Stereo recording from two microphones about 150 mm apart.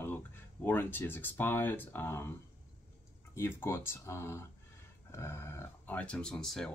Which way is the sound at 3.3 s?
15° left (ahead or behind).